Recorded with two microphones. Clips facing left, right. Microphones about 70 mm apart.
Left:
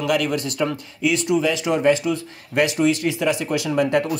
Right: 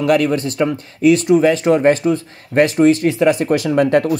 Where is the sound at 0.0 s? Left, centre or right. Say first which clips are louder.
Right 6 dB; right.